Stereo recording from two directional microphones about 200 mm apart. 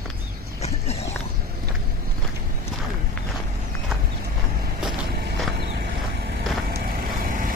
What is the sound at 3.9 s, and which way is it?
Horse, centre (ahead or behind).